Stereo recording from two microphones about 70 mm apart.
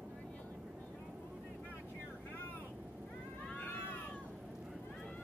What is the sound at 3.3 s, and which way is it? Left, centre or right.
Vehicle, centre.